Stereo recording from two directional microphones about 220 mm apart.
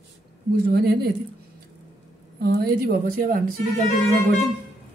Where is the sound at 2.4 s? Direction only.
45° right (ahead or behind).